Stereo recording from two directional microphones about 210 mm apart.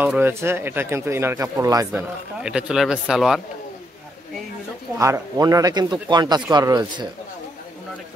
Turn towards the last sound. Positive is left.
turn(degrees=-20)  # may be behind; listen again after turning